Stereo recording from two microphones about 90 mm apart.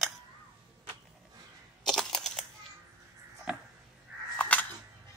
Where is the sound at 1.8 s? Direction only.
5° left (ahead or behind).